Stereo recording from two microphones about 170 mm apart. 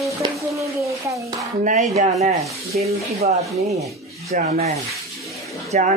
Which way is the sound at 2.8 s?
35° right (ahead or behind).